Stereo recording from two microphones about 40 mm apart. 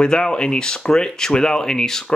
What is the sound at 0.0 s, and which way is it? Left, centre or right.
Speech, left.